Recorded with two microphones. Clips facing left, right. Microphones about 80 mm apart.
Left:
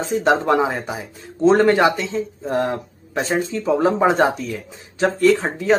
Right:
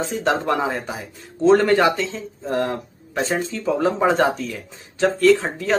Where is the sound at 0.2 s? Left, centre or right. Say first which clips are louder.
Left 4 dB; centre.